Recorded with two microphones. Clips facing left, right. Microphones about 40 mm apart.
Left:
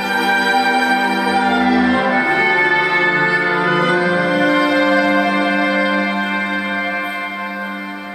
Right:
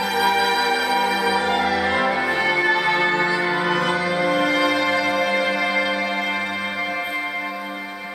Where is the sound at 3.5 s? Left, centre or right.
Left.